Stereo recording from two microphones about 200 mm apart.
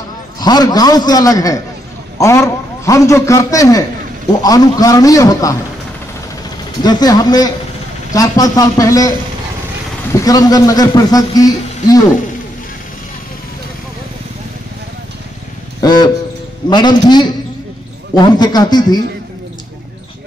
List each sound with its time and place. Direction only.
0.4 s a man's voice: 20° left (ahead or behind)
6.8 s a man's voice: 20° left (ahead or behind)
10.1 s a man's voice: 20° left (ahead or behind)
15.8 s a sound: 20° left (ahead or behind)
16.6 s a man's voice: 20° left (ahead or behind)